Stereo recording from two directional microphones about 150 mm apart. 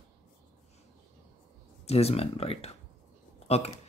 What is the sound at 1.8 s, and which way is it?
Speech, 40° left (ahead or behind).